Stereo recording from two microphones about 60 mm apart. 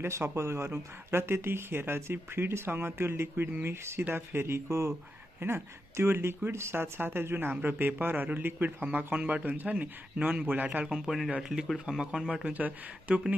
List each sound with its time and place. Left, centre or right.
0.0 s speech: right
4.6 s speech: right
5.4 s speech: right
10.9 s speech: centre
12.5 s speech: right